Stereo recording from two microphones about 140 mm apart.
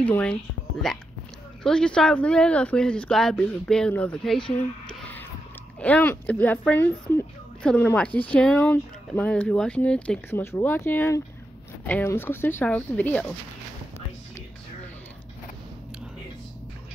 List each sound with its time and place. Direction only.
0.0 s speech: 10° left (ahead or behind)
4.8 s a sound: 10° left (ahead or behind)
5.8 s speech: 10° left (ahead or behind)